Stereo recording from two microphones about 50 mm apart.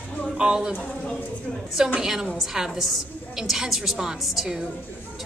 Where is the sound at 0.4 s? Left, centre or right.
Centre.